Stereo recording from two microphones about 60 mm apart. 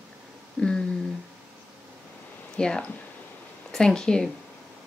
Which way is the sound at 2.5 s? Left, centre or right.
Centre.